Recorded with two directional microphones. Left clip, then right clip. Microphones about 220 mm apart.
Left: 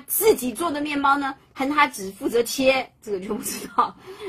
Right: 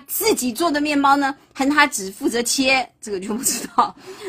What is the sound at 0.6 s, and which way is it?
A woman's voice, 45° right (ahead or behind).